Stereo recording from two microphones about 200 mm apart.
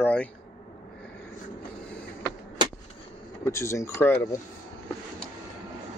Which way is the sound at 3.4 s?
15° left (ahead or behind).